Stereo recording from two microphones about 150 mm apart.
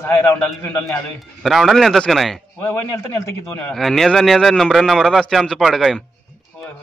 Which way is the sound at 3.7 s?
Centre (ahead or behind).